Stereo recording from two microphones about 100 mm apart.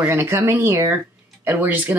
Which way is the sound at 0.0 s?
25° right (ahead or behind).